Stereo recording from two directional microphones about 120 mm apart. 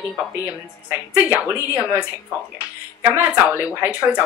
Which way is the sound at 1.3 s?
10° right (ahead or behind).